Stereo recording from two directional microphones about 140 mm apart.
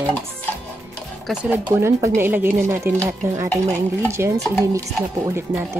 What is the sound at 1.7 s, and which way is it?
Speech, 20° right (ahead or behind).